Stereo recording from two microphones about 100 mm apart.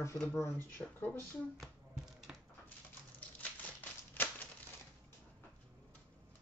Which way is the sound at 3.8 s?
20° left (ahead or behind).